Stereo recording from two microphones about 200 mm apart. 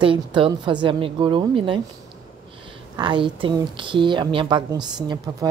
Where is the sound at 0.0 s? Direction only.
25° right (ahead or behind).